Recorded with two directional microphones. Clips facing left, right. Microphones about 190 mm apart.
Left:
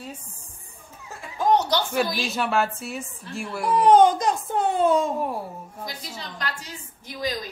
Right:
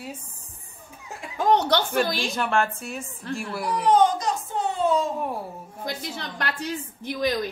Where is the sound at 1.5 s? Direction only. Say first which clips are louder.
Right 1 dB; 60° right (ahead or behind).